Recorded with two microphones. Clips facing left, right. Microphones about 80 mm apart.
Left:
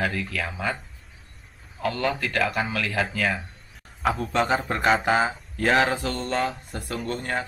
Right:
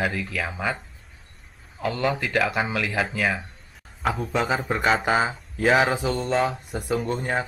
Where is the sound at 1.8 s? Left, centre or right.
Centre.